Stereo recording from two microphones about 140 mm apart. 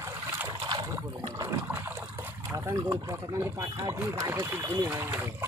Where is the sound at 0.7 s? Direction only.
30° right (ahead or behind).